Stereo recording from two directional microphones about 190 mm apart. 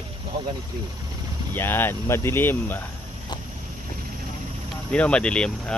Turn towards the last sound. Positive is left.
turn(degrees=5)  # may be behind; listen again after turning